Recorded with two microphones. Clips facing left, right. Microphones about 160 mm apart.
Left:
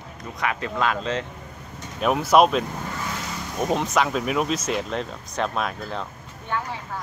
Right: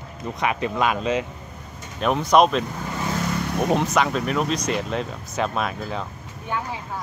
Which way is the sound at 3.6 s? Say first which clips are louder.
Right 1 dB; centre (ahead or behind).